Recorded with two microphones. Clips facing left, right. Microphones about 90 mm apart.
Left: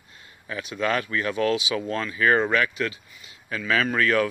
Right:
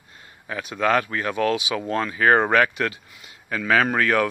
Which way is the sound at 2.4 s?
50° right (ahead or behind).